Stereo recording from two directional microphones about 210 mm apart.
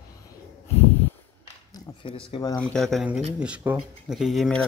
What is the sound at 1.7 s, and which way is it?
Speech, 25° left (ahead or behind).